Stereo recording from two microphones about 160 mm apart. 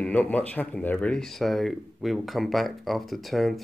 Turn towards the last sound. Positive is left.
turn(degrees=0)  # may be behind; listen again after turning